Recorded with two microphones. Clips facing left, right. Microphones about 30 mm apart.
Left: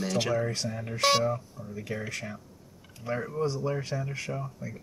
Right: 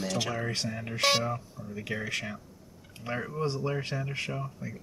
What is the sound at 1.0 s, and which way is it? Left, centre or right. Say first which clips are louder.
Speech: left 2 dB; centre.